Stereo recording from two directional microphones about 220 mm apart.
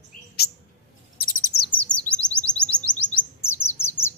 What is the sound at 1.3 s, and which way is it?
Chirp, 40° left (ahead or behind).